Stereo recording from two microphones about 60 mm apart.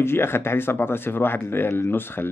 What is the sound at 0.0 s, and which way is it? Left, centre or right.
Speech, left.